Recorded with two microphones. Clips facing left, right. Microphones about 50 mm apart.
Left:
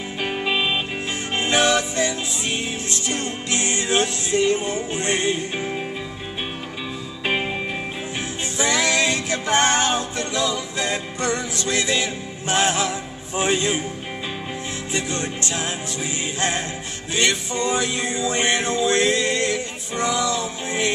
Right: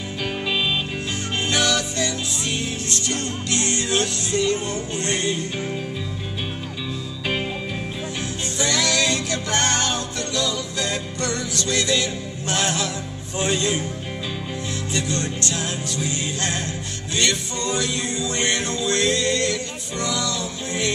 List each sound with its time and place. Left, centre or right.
0.2 s music: left
8.5 s music: centre
14.9 s music: centre